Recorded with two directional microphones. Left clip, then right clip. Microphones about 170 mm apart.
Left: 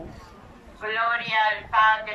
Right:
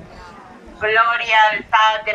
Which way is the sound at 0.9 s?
65° right (ahead or behind).